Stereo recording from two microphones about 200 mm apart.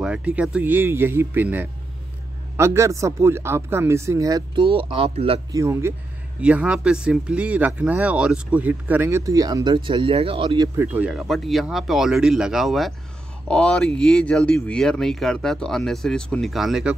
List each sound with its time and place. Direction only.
0.0 s speech: 5° right (ahead or behind); by 5.4 s 30° right (ahead or behind)
5.5 s speech: 15° right (ahead or behind)
10.8 s speech: 10° right (ahead or behind)